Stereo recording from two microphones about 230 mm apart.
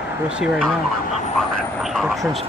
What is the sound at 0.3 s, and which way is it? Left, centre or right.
Speech, centre.